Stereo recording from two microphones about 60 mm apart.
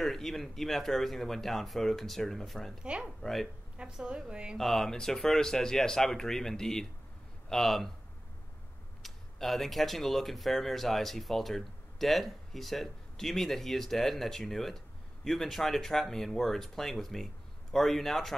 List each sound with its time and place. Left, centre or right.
0.0 s speech: centre
2.8 s a woman's voice: centre
3.2 s speech: centre
3.7 s a woman's voice: centre
4.6 s speech: centre
9.0 s speech: centre